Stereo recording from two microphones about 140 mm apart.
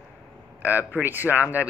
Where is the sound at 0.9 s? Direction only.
15° right (ahead or behind).